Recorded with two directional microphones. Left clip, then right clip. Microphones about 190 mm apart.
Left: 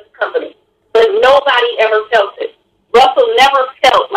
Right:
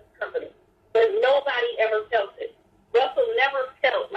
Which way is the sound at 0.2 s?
45° left (ahead or behind).